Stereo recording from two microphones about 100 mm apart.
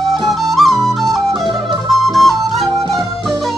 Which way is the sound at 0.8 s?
Centre (ahead or behind).